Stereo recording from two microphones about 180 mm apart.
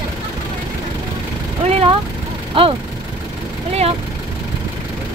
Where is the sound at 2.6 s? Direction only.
30° right (ahead or behind).